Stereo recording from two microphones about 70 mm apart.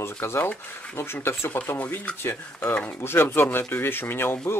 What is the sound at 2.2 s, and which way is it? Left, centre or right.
Speech, left.